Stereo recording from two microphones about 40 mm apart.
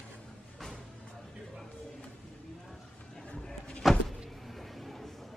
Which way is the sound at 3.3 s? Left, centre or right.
Centre.